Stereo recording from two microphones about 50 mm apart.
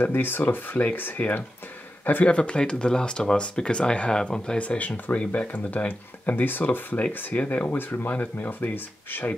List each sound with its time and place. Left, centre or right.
0.0 s speech: left
2.2 s speech: left
4.6 s speech: left
5.1 s speech: left
5.5 s speech: left
7.6 s speech: left